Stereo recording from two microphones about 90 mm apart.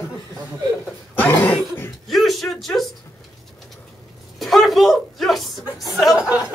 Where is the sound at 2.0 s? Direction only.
Centre (ahead or behind).